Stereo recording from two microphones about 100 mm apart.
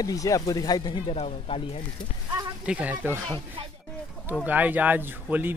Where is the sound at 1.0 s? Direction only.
80° left.